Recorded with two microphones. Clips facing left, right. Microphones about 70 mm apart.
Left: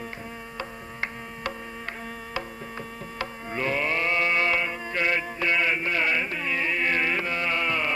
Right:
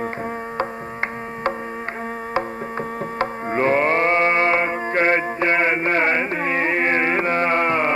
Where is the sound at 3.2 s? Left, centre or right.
Right.